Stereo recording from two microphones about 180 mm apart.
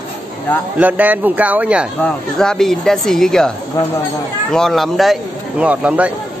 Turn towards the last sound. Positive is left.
turn(degrees=-10)  # may be behind; listen again after turning